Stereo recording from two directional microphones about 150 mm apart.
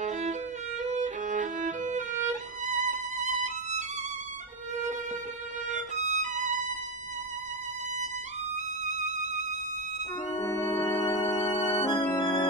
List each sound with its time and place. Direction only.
0.0 s violin: 55° right (ahead or behind)
5.7 s violin: 50° right (ahead or behind)
9.0 s music: 85° left
10.3 s music: 10° left (ahead or behind)